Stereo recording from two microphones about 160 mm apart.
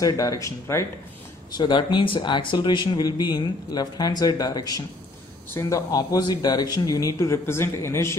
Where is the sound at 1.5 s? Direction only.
30° left (ahead or behind).